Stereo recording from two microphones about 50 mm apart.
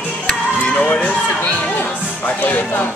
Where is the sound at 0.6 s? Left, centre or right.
Centre.